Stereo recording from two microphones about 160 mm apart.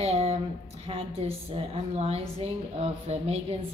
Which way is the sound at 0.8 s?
35° right (ahead or behind).